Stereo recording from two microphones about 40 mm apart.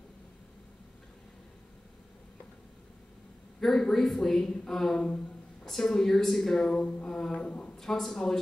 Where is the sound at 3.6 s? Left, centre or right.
Centre.